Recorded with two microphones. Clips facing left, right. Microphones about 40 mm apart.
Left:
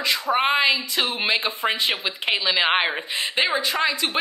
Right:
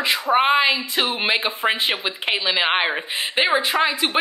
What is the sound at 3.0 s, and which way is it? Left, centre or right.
Speech, right.